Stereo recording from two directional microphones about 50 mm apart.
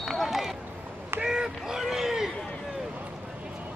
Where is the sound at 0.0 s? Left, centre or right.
Centre.